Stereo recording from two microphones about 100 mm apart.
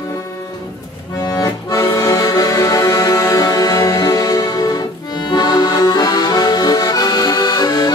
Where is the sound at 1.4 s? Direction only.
35° left (ahead or behind).